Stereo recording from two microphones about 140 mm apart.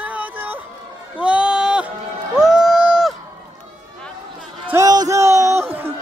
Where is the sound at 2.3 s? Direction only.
5° right (ahead or behind).